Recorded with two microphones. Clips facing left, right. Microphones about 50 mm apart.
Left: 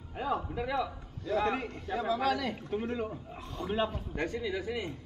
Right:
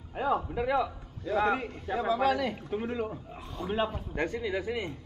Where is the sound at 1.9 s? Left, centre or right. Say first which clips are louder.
Right 3 dB; right.